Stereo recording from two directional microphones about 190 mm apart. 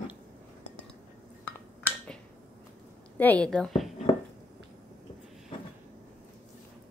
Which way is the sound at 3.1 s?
10° left (ahead or behind).